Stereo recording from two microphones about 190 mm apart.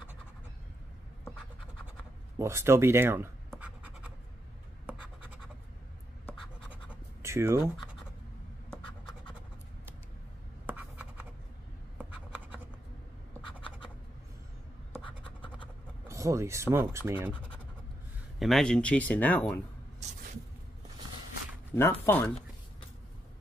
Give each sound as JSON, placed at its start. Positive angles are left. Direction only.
{"t": 2.3, "sound": "speech", "side_deg": -15}
{"t": 3.4, "sound": "scratch", "side_deg": -5}
{"t": 6.7, "sound": "scratch", "side_deg": -15}
{"t": 10.7, "sound": "scratch", "side_deg": -10}
{"t": 13.5, "sound": "scratch", "side_deg": 25}
{"t": 16.1, "sound": "speech", "side_deg": -15}
{"t": 18.4, "sound": "speech", "side_deg": 0}
{"t": 21.7, "sound": "speech", "side_deg": 15}